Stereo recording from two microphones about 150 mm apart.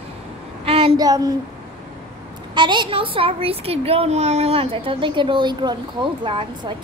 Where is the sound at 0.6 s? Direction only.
40° right (ahead or behind).